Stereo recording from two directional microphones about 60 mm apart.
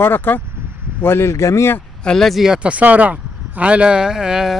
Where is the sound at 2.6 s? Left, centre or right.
Right.